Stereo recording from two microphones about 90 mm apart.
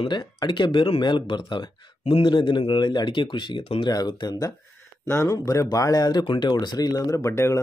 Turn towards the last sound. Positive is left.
turn(degrees=30)  # may be behind; listen again after turning